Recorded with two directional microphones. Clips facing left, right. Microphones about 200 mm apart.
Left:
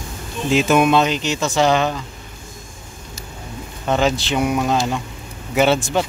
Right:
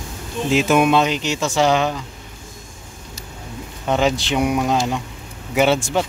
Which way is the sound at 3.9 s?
15° right (ahead or behind).